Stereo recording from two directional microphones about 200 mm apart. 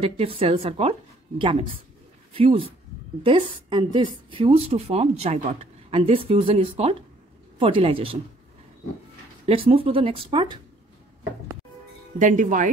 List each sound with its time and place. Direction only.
0.0 s a woman's voice: 30° right (ahead or behind)
9.5 s a woman's voice: 25° right (ahead or behind)
12.2 s speech: 40° right (ahead or behind)